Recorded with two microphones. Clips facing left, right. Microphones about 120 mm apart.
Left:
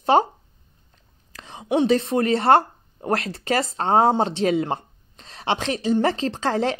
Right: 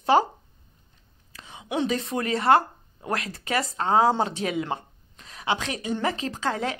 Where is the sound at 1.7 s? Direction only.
25° left (ahead or behind).